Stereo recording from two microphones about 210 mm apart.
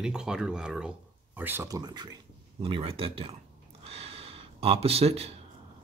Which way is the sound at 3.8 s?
30° right (ahead or behind).